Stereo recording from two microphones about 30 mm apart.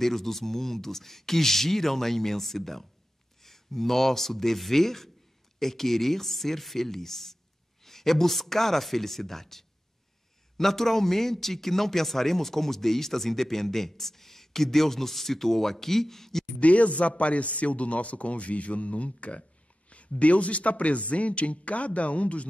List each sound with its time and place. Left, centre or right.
0.0 s speech: centre
16.5 s a man's voice: left